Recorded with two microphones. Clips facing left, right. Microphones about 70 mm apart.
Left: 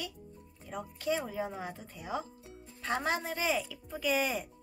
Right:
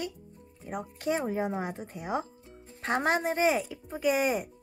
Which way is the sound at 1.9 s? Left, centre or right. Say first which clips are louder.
Right 5 dB; right.